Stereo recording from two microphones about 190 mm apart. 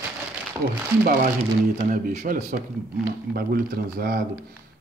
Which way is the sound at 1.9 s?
40° right (ahead or behind).